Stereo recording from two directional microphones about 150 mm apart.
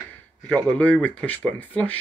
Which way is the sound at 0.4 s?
5° left (ahead or behind).